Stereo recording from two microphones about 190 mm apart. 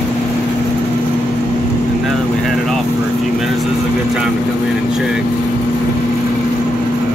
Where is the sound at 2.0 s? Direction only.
Centre (ahead or behind).